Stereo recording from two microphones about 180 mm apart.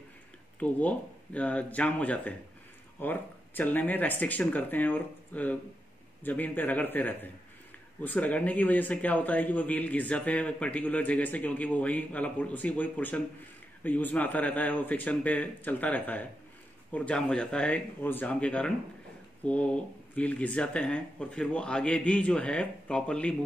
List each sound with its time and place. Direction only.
0.6 s speech: 10° left (ahead or behind)